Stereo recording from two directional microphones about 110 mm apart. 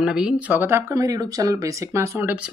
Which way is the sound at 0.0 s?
5° right (ahead or behind).